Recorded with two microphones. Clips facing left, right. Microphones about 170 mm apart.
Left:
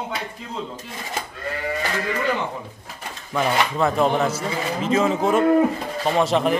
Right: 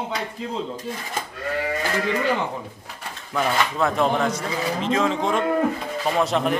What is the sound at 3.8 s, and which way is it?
Speech, centre (ahead or behind).